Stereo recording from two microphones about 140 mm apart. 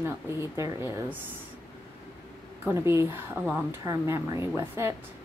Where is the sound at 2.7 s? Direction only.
20° right (ahead or behind).